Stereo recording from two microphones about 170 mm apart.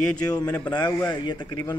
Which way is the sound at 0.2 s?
20° left (ahead or behind).